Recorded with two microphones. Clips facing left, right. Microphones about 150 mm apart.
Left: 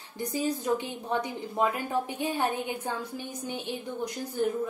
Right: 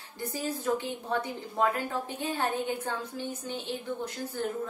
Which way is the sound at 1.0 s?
15° left (ahead or behind).